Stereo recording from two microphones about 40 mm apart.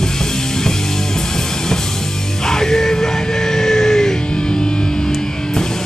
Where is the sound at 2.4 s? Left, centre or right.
Centre.